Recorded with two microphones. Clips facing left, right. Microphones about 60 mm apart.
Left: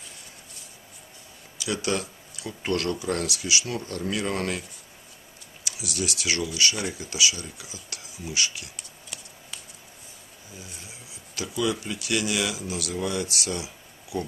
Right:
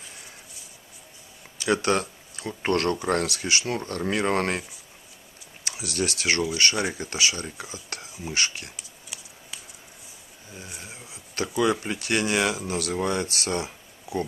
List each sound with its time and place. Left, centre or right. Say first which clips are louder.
1.6 s speech: right 5 dB; right
8.7 s a sound: even; centre
10.6 s speech: right 5 dB; right